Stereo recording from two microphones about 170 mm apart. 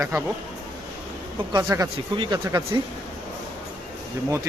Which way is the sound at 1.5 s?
20° right (ahead or behind).